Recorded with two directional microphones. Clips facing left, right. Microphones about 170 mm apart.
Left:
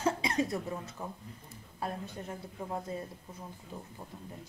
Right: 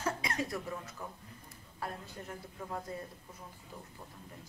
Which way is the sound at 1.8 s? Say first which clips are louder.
Left 4 dB; 20° left (ahead or behind).